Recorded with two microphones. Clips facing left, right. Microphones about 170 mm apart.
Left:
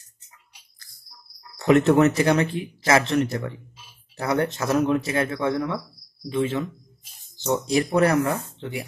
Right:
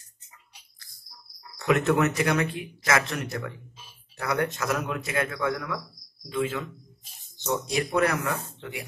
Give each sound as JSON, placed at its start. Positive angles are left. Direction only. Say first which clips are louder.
{"t": 1.6, "sound": "a man's voice", "louder": "left 6 dB", "side_deg": 30}